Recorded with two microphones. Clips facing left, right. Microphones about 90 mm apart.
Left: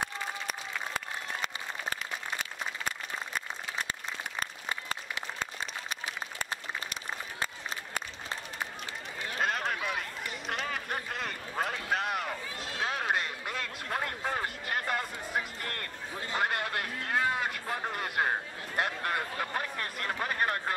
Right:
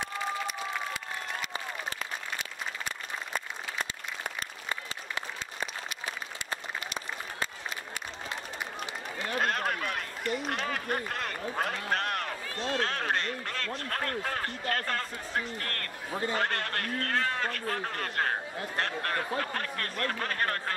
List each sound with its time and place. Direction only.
0.0 s applause: 50° left (ahead or behind)
9.4 s run: centre (ahead or behind)
10.5 s a sound: centre (ahead or behind)
16.3 s a man's voice: 10° left (ahead or behind)